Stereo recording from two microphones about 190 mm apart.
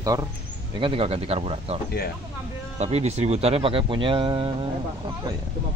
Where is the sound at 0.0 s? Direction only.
20° right (ahead or behind).